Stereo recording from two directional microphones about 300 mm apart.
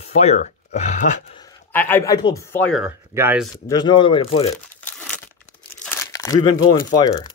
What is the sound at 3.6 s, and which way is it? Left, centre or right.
Speech, centre.